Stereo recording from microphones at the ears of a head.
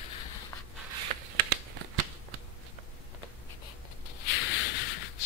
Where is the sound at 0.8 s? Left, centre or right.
Right.